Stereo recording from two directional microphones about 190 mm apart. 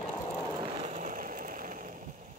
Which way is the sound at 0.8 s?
40° right (ahead or behind).